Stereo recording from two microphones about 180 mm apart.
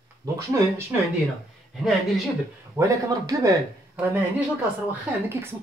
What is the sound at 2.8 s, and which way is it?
Speech, 20° right (ahead or behind).